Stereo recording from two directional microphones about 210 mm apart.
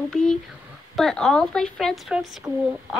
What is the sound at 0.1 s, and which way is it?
Speech, 5° left (ahead or behind).